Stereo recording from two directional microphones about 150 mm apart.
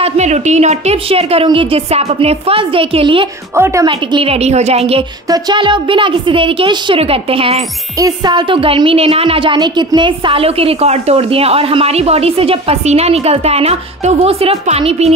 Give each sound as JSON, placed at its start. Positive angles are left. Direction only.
{"t": 0.0, "sound": "a woman's voice", "side_deg": -50}
{"t": 3.5, "sound": "a woman's voice", "side_deg": -20}
{"t": 3.8, "sound": "a woman's voice", "side_deg": -35}
{"t": 5.3, "sound": "a woman's voice", "side_deg": -30}
{"t": 8.0, "sound": "a woman's voice", "side_deg": -30}